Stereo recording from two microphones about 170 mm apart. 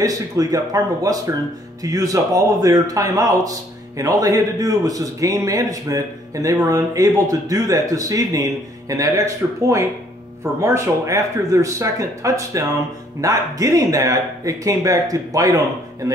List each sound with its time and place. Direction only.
0.0 s a man's voice: 20° right (ahead or behind)